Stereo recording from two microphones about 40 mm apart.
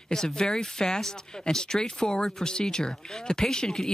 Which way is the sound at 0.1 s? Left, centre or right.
Centre.